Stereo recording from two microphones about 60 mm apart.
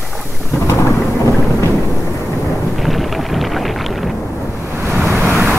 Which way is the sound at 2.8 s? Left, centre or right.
Centre.